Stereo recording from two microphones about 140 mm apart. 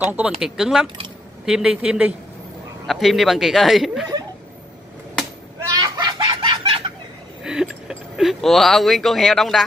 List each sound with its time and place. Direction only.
0.1 s a woman's voice: 5° right (ahead or behind)
5.8 s chicken: 30° right (ahead or behind)
7.4 s a sound: 5° right (ahead or behind)